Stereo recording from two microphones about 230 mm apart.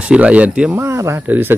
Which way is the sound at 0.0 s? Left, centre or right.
Centre.